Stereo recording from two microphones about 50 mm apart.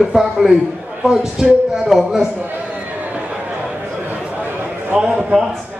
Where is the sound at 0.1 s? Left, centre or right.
Centre.